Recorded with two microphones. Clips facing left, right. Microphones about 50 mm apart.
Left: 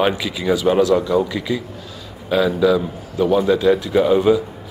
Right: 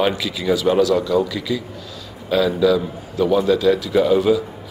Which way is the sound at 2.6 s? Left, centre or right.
Centre.